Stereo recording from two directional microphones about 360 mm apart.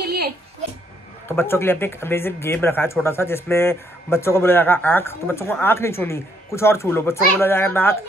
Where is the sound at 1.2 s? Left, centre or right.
Centre.